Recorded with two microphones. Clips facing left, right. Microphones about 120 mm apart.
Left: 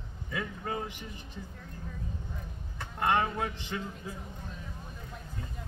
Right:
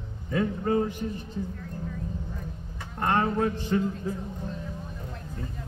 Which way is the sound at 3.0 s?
40° right (ahead or behind).